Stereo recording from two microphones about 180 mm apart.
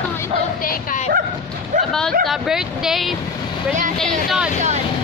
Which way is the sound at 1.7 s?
40° right (ahead or behind).